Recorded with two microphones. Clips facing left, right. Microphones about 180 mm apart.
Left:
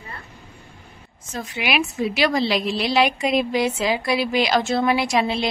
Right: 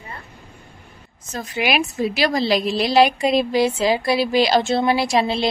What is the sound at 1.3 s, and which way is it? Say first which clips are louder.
A woman's voice: right 3 dB; 40° right (ahead or behind).